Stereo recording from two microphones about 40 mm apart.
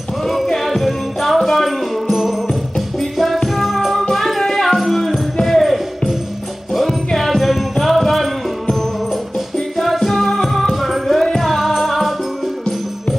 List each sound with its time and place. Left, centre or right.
0.7 s music: centre
3.5 s music: centre
9.8 s music: centre
11.4 s music: centre